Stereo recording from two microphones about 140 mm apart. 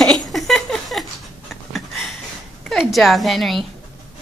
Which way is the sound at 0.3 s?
Centre (ahead or behind).